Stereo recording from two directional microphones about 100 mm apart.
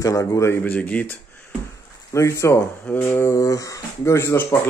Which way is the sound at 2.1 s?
30° left (ahead or behind).